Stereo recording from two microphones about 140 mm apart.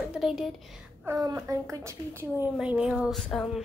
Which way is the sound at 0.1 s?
5° right (ahead or behind).